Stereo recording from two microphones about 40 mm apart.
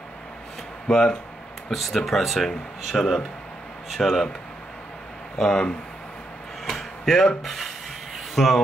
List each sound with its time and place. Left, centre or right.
0.8 s speech: centre
1.7 s speech: centre
5.4 s speech: centre
6.6 s a sound: centre
8.4 s speech: centre